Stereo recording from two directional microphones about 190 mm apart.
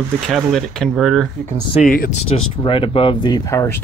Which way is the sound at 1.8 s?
45° left (ahead or behind).